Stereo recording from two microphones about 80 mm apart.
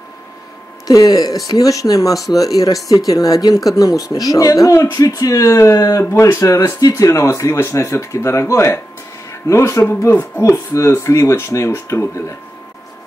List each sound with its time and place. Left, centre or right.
0.8 s speech: left